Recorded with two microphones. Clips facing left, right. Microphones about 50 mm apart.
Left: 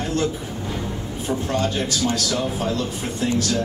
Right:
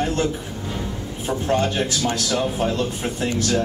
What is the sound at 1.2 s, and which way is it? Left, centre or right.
A man's voice, right.